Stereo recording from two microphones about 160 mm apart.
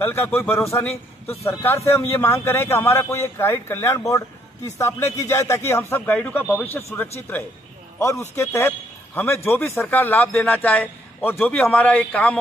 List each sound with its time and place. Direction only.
0.0 s a man's voice: 15° left (ahead or behind)